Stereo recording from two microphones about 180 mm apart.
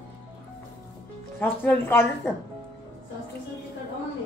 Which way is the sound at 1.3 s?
10° left (ahead or behind).